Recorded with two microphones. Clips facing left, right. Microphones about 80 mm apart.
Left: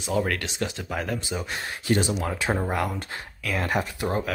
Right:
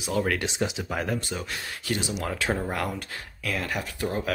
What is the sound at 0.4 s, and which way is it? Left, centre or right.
Speech, centre.